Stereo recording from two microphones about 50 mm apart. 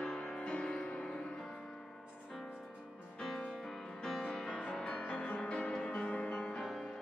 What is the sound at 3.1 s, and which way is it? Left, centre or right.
Music, centre.